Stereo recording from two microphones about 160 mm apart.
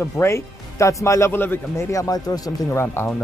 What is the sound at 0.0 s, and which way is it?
A man's voice, 15° left (ahead or behind).